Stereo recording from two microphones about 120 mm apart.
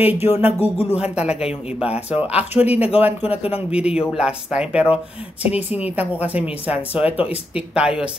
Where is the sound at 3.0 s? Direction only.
15° right (ahead or behind).